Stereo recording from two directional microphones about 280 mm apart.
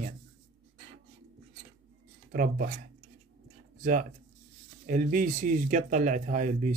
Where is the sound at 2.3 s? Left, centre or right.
Right.